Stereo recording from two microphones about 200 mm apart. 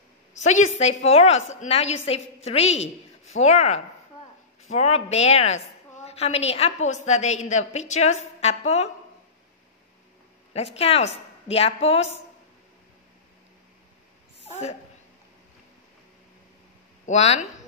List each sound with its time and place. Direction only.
0.3 s a woman's voice: 35° left (ahead or behind)
10.5 s a woman's voice: 30° left (ahead or behind)
14.5 s a woman's voice: 30° left (ahead or behind)
17.0 s speech: 35° left (ahead or behind)